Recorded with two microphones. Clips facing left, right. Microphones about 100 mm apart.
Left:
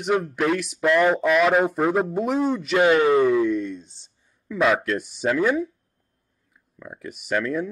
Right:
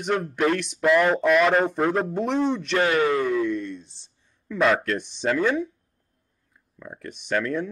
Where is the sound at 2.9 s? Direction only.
30° left (ahead or behind).